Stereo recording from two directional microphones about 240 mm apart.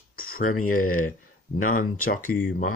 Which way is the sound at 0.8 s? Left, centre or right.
Left.